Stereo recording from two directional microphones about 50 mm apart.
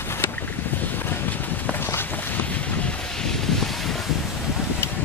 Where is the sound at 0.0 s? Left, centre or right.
Left.